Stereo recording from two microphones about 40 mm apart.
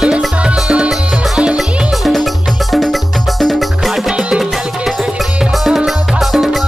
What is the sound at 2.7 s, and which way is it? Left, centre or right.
Music, centre.